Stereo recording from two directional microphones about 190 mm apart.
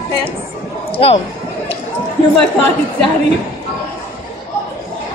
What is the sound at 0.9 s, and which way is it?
Speech, 30° left (ahead or behind).